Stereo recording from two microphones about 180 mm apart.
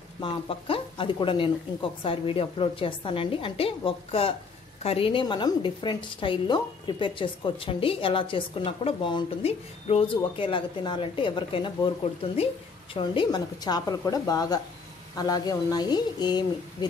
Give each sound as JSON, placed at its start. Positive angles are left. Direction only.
{"t": 0.2, "sound": "a woman's voice", "side_deg": 30}